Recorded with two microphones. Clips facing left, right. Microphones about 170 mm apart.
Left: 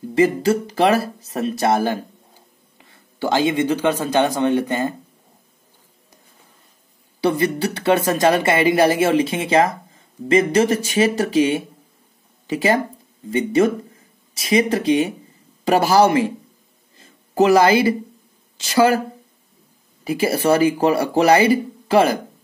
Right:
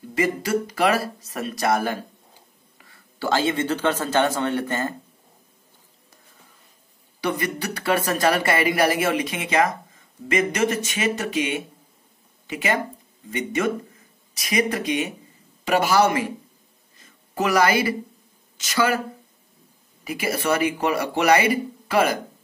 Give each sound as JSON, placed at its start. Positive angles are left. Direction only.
{"t": 0.1, "sound": "a man's voice", "side_deg": 30}
{"t": 7.2, "sound": "speech", "side_deg": 30}
{"t": 16.9, "sound": "a sound", "side_deg": 30}
{"t": 18.6, "sound": "speech", "side_deg": 30}
{"t": 20.1, "sound": "speech", "side_deg": 30}